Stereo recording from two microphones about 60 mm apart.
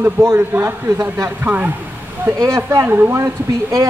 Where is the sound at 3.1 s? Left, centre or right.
Right.